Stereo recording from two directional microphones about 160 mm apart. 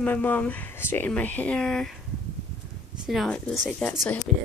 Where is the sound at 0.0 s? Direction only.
10° left (ahead or behind).